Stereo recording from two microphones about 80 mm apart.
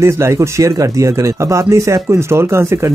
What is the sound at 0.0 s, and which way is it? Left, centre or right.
Speech, right.